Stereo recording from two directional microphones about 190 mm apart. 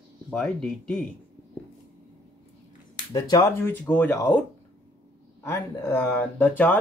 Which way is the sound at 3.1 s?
20° left (ahead or behind).